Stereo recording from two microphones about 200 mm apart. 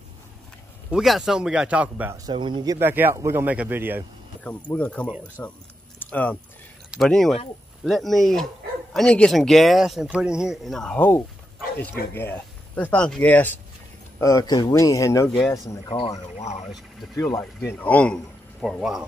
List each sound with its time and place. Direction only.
0.9 s speech: centre (ahead or behind)
2.2 s speech: 25° right (ahead or behind)
4.7 s speech: 5° left (ahead or behind)
5.9 s a sound: 10° left (ahead or behind)
6.9 s speech: centre (ahead or behind); by 16.0 s 20° left (ahead or behind)
16.3 s speech: 35° left (ahead or behind)
17.2 s speech: 15° left (ahead or behind); by 19.0 s centre (ahead or behind)